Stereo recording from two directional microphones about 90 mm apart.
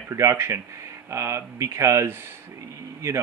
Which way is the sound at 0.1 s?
35° right (ahead or behind).